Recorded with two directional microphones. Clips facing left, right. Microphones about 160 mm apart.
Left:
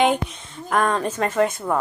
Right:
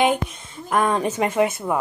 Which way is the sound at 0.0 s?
5° right (ahead or behind).